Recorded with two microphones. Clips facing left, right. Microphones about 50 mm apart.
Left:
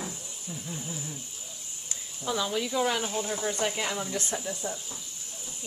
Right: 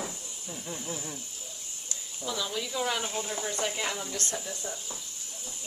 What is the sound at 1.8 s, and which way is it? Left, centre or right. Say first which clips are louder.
Speech: left 3 dB; left.